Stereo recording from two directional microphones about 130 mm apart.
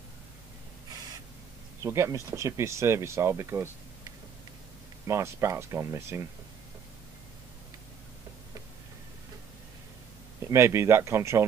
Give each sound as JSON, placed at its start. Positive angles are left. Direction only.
{"t": 1.8, "sound": "speech", "side_deg": -20}
{"t": 5.0, "sound": "speech", "side_deg": -20}
{"t": 10.5, "sound": "speech", "side_deg": -20}